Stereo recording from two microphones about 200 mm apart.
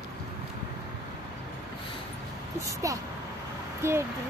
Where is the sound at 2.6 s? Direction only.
15° right (ahead or behind).